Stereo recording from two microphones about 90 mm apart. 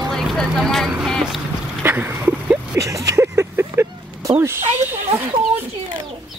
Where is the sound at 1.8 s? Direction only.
20° right (ahead or behind).